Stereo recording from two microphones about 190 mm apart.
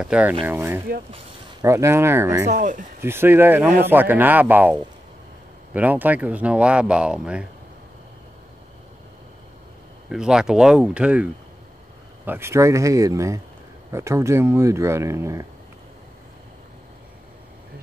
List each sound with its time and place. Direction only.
0.0 s speech: 5° right (ahead or behind)
2.5 s speech: 40° right (ahead or behind)
3.0 s speech: 10° right (ahead or behind)
10.0 s speech: 5° right (ahead or behind)
12.3 s speech: 15° right (ahead or behind)